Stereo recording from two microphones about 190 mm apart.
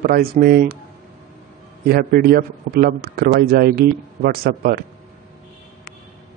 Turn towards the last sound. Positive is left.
turn(degrees=-50)  # may be behind; listen again after turning